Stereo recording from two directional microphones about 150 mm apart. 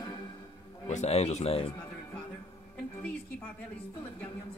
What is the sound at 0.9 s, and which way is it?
Speech, 50° left (ahead or behind).